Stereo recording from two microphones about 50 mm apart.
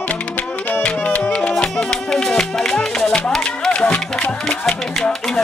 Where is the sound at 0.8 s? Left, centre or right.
Left; by 3.7 s centre.